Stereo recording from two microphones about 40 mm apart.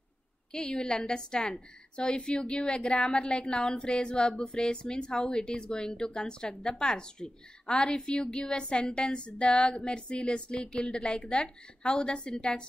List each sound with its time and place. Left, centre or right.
0.5 s speech: centre